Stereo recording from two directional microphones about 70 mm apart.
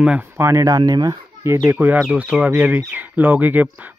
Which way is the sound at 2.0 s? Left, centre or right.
Centre.